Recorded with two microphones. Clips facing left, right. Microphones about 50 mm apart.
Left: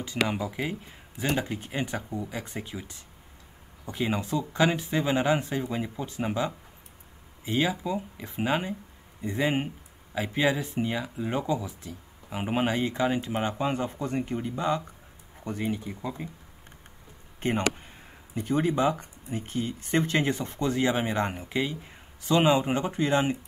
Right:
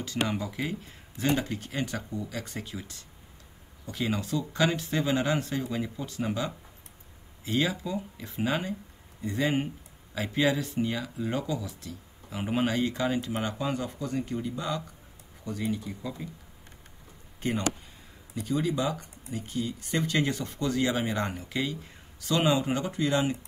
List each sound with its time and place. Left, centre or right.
0.0 s speech: centre
17.4 s speech: left